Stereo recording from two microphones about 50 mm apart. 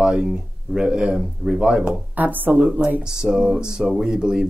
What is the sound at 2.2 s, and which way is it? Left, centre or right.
Speech, right.